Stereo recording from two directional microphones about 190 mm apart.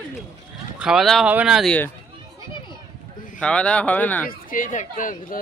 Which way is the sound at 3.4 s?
5° left (ahead or behind).